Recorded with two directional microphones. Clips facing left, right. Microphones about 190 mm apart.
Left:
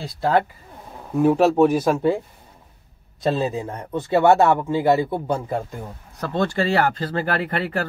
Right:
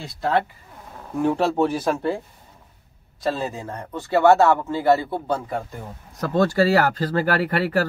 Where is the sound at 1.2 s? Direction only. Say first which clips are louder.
Left 5 dB; 10° left (ahead or behind).